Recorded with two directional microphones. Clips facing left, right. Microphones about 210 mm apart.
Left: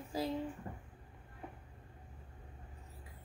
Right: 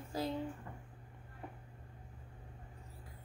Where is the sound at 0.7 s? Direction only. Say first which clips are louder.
Left 4 dB; 30° left (ahead or behind).